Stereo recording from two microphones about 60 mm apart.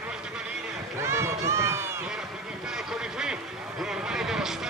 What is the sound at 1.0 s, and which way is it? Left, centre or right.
Run, right.